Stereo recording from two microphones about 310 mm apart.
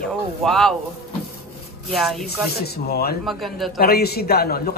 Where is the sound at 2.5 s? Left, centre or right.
Left.